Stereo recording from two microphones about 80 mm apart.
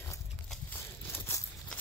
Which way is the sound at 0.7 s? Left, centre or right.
Left.